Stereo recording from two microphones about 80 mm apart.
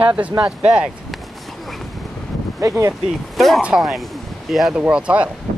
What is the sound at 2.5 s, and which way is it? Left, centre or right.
Speech, right.